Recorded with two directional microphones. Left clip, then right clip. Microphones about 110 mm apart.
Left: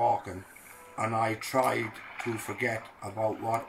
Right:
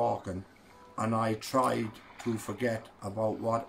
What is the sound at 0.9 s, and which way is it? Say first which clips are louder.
Speech: left 2 dB; 30° right (ahead or behind).